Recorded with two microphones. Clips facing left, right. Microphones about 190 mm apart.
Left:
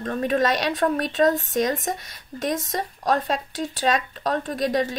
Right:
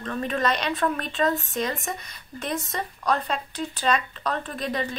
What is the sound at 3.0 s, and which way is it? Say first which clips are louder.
Speech: left 3 dB; 45° left (ahead or behind).